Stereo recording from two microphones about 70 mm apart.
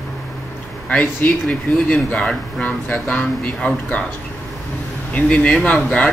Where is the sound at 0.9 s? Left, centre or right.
Centre.